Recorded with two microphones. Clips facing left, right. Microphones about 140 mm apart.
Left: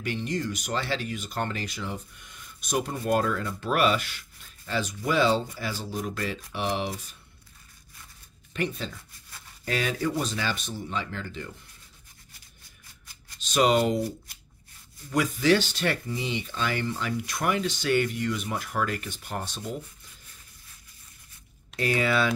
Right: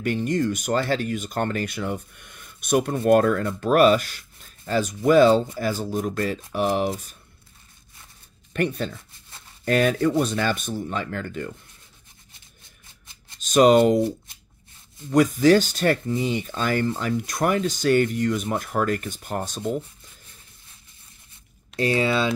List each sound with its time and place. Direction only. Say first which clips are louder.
0.0 s speech: right 7 dB; 50° right (ahead or behind)
8.5 s speech: right 6 dB; 55° right (ahead or behind)
13.0 s shuffling cards: even; 25° right (ahead or behind)
13.4 s speech: right 7 dB; 45° right (ahead or behind)
14.0 s shuffling cards: right 7 dB; 25° right (ahead or behind)
15.0 s speech: right 6 dB; 40° right (ahead or behind)
21.7 s speech: right 3 dB; 30° right (ahead or behind)